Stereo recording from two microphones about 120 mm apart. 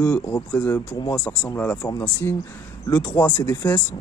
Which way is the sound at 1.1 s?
10° left (ahead or behind).